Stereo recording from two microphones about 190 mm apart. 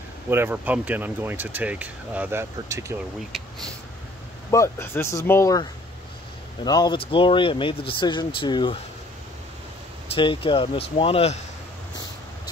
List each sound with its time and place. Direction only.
0.3 s speech: 10° right (ahead or behind)
4.5 s speech: 15° left (ahead or behind)
10.0 s speech: 25° left (ahead or behind)